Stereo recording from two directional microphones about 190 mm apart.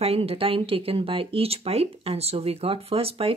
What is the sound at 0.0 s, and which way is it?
Speech, 30° right (ahead or behind).